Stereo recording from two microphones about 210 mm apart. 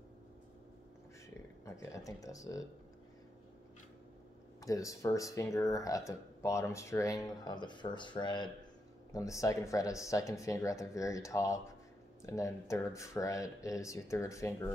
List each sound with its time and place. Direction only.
1.6 s speech: 15° left (ahead or behind)
4.6 s speech: 15° left (ahead or behind)